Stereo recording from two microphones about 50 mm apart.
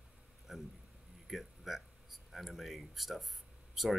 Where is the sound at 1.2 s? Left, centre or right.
Centre.